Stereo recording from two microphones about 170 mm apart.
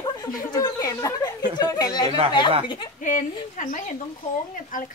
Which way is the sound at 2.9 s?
50° left (ahead or behind).